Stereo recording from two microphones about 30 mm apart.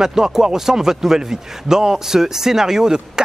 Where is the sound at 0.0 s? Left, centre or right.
Centre.